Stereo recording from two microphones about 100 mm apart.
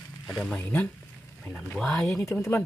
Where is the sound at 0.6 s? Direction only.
15° left (ahead or behind).